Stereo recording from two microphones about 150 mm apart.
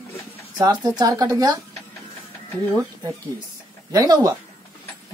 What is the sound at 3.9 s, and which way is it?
Speech, 25° right (ahead or behind).